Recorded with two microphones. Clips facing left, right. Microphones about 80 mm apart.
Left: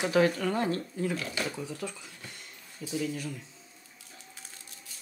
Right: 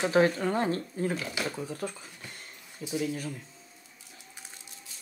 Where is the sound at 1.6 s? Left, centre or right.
Right.